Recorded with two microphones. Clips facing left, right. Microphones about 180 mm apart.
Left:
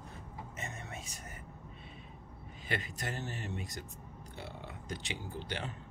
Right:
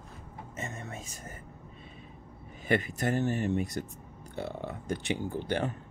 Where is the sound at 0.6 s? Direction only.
40° right (ahead or behind).